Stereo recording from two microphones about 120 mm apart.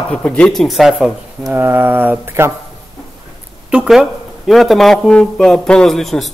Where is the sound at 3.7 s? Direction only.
5° right (ahead or behind).